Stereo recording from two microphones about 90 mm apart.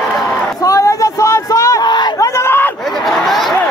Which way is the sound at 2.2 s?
35° left (ahead or behind).